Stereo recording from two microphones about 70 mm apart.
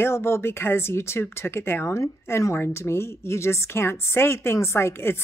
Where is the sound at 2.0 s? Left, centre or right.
Left.